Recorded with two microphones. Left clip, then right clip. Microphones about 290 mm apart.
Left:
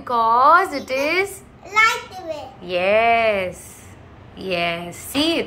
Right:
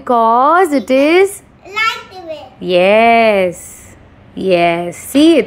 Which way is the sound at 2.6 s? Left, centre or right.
Right.